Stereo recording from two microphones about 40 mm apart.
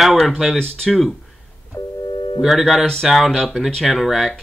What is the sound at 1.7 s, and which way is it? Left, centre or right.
Busy signal, left.